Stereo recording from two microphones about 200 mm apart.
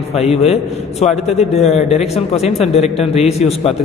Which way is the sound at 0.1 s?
30° left (ahead or behind).